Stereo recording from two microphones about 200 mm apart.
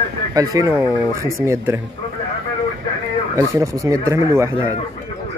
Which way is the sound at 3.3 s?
15° right (ahead or behind).